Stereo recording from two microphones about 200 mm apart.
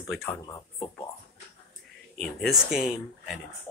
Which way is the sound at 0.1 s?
Centre (ahead or behind).